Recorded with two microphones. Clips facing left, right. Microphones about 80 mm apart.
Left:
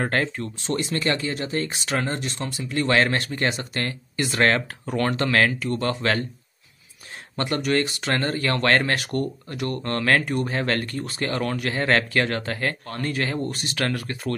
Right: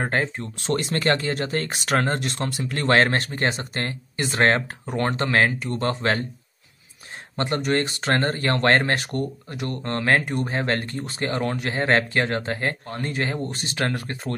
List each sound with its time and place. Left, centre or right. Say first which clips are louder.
0.0 s speech: even; centre
0.6 s speech: right 2 dB; right
7.3 s speech: even; right